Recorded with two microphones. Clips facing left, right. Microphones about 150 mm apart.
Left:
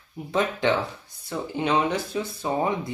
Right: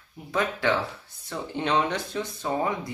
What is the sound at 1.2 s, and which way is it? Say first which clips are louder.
Speech: left 2 dB; 5° left (ahead or behind).